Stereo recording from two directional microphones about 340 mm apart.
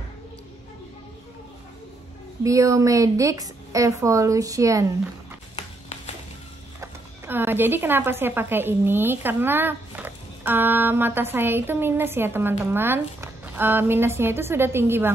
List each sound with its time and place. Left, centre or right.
2.4 s speech: centre
6.8 s speech: centre